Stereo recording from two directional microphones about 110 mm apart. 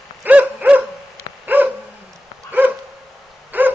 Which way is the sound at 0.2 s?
15° right (ahead or behind).